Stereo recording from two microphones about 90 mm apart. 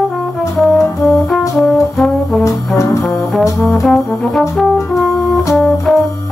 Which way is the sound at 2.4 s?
35° left (ahead or behind).